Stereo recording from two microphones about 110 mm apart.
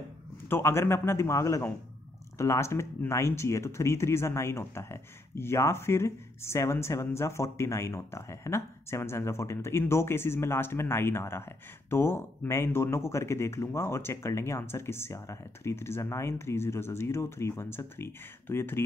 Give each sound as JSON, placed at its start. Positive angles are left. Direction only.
{"t": 0.5, "sound": "speech", "side_deg": 25}